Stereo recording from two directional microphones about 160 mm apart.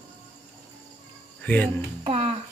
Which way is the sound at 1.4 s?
10° left (ahead or behind).